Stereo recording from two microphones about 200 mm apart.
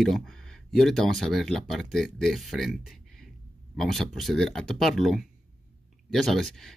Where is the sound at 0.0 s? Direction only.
Centre (ahead or behind).